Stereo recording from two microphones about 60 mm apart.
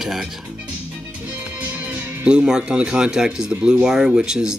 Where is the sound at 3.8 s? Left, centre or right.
Centre.